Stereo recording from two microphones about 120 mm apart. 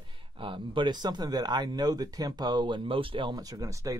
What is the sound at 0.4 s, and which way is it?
Speech, 45° right (ahead or behind).